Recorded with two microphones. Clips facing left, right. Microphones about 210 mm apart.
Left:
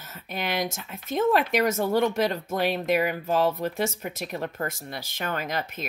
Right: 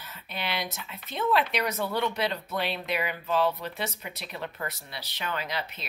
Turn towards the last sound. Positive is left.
turn(degrees=50)  # may be behind; listen again after turning